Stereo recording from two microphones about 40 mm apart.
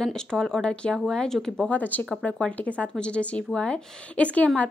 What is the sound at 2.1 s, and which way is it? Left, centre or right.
Speech, left.